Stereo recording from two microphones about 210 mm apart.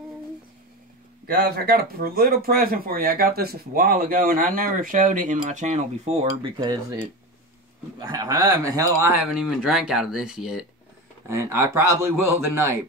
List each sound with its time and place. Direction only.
1.2 s speech: 45° right (ahead or behind); by 6.5 s 30° right (ahead or behind)
6.6 s speech: 15° right (ahead or behind)
8.0 s speech: 20° right (ahead or behind)
9.2 s speech: 5° right (ahead or behind)